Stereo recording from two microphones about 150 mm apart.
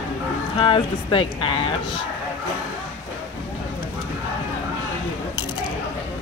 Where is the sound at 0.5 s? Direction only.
35° left (ahead or behind).